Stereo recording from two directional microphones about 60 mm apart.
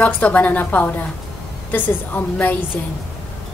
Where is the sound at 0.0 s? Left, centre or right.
Left.